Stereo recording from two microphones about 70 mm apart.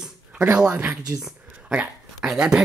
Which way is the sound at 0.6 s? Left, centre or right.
Centre.